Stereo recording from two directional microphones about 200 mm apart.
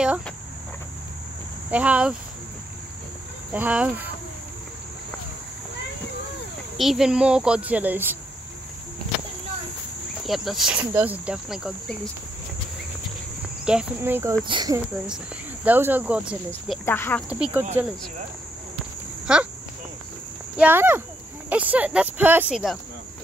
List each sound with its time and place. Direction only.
1.7 s speech: 5° right (ahead or behind)
3.5 s speech: 5° right (ahead or behind)
6.8 s speech: centre (ahead or behind)
10.2 s speech: centre (ahead or behind)
13.7 s speech: 5° right (ahead or behind)
14.5 s speech: 20° right (ahead or behind)
15.6 s speech: 10° right (ahead or behind)
16.8 s speech: 10° left (ahead or behind)
17.3 s speech: 10° right (ahead or behind)
19.3 s speech: 5° right (ahead or behind)
20.5 s speech: 10° right (ahead or behind)